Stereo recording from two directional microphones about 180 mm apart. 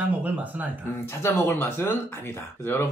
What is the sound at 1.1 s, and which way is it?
Speech, 15° left (ahead or behind).